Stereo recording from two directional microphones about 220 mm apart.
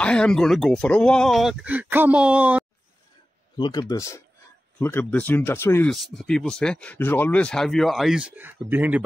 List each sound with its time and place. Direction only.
0.0 s speech: 5° left (ahead or behind)
3.5 s speech: 20° left (ahead or behind); by 9.0 s 10° right (ahead or behind)